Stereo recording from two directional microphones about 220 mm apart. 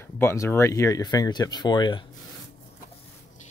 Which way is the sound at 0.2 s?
10° left (ahead or behind).